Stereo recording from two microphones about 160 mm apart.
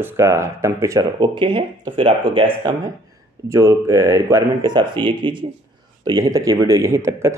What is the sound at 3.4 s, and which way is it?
Speech, 20° right (ahead or behind).